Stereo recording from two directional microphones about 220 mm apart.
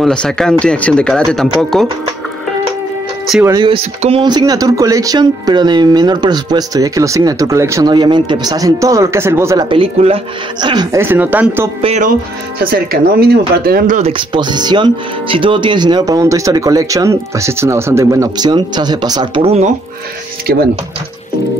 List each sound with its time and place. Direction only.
0.0 s speech: 5° left (ahead or behind)
3.4 s speech: 20° right (ahead or behind)
11.8 s speech: 30° right (ahead or behind)
12.5 s speech: 40° right (ahead or behind)
20.5 s speech: 45° right (ahead or behind)